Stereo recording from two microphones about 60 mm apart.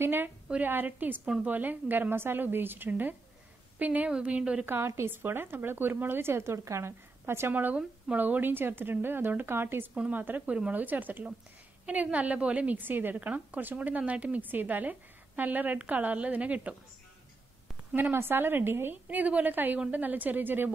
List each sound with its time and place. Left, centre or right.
0.0 s speech: right
1.2 s a woman's voice: centre
1.5 s a woman's voice: right
4.1 s a woman's voice: centre
4.6 s speech: right
8.2 s a woman's voice: right
18.1 s speech: right
19.0 s a woman's voice: right